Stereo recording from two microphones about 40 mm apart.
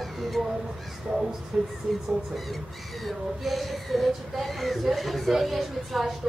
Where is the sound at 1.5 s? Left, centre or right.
Centre.